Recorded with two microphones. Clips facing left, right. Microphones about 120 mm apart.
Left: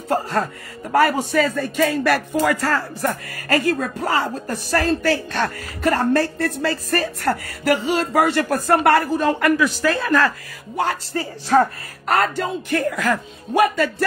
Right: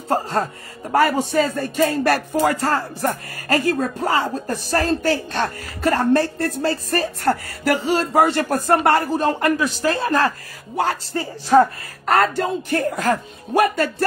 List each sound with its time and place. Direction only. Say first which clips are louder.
0.1 s music: even; 30° right (ahead or behind)
7.6 s speech: even; 40° right (ahead or behind)
10.8 s music: right 1 dB; 35° right (ahead or behind)
12.1 s music: right 2 dB; 40° right (ahead or behind)